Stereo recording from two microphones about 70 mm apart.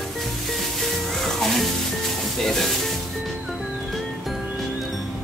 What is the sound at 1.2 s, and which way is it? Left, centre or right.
Music, centre.